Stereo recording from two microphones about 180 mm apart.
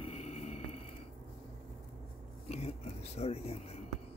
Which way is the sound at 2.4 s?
35° left (ahead or behind).